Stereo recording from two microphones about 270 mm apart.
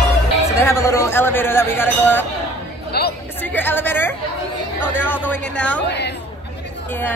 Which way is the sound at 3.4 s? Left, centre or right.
Centre.